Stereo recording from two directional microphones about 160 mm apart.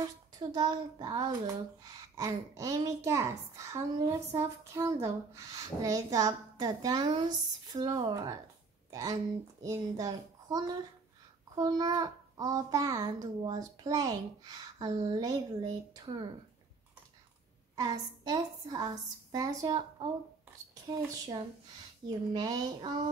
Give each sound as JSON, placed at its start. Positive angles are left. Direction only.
{"t": 0.4, "sound": "a child's voice", "side_deg": -30}
{"t": 17.7, "sound": "a child's voice", "side_deg": -25}
{"t": 22.0, "sound": "a child's voice", "side_deg": -30}